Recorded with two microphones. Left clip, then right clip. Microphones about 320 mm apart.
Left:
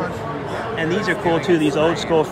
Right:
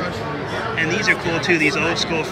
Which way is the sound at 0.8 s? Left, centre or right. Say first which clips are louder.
Even; centre.